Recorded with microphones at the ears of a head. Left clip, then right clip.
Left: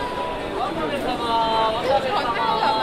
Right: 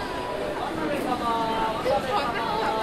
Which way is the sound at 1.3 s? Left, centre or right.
Left.